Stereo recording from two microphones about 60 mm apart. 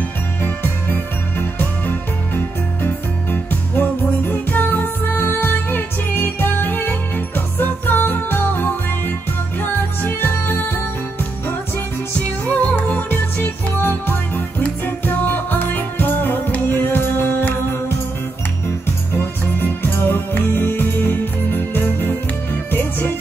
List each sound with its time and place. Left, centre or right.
0.4 s music: left
12.2 s music: left
19.1 s music: left